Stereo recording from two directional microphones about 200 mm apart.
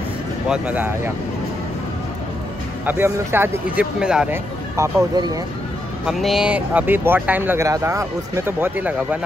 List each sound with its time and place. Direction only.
0.5 s speech: 10° right (ahead or behind)
2.8 s speech: 10° right (ahead or behind)
4.7 s speech: 15° right (ahead or behind)
6.0 s speech: centre (ahead or behind)